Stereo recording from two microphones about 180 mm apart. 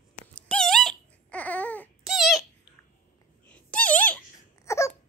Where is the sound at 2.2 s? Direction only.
Centre (ahead or behind).